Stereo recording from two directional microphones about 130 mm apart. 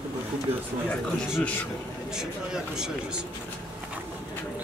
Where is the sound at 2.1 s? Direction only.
5° right (ahead or behind).